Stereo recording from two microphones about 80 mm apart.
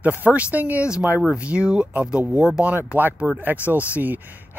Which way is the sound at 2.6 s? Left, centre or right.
Right.